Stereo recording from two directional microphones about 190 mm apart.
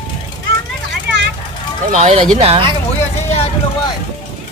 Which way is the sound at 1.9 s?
35° right (ahead or behind).